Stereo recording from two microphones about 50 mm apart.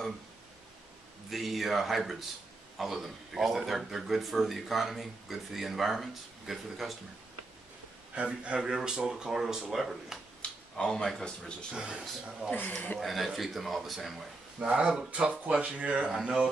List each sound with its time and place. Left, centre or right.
1.3 s speech: centre
8.1 s speech: right; by 10.2 s centre
10.4 s a sound: centre
11.1 s speech: centre
11.7 s speech: centre
12.5 s speech: left
13.0 s speech: centre
14.7 s speech: centre
15.0 s speech: right
16.2 s speech: centre